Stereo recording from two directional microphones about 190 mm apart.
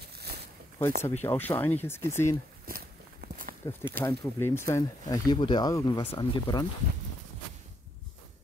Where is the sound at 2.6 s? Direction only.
50° right (ahead or behind).